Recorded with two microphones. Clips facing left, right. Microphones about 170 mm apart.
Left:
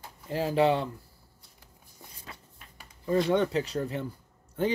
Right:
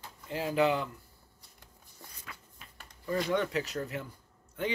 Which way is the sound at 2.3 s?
30° left (ahead or behind).